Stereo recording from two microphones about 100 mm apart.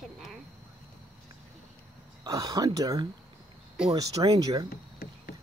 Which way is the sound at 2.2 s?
35° right (ahead or behind).